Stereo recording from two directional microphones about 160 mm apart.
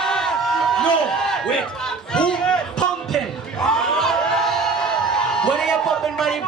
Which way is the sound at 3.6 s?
5° left (ahead or behind).